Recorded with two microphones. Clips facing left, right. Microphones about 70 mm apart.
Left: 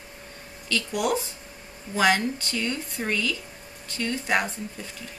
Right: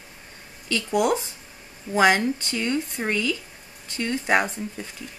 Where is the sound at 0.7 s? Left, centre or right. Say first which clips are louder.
Right 4 dB; right.